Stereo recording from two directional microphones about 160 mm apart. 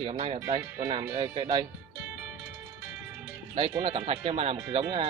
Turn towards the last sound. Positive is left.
turn(degrees=-40)  # may be behind; listen again after turning